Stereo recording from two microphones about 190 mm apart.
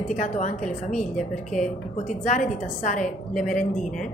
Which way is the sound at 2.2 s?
40° left (ahead or behind).